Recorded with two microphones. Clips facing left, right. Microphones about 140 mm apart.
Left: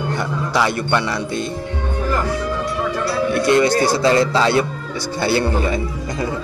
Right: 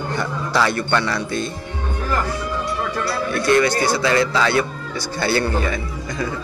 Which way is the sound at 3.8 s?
35° left (ahead or behind).